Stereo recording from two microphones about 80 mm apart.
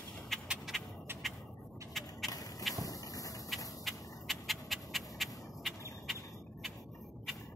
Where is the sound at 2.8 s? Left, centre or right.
Left.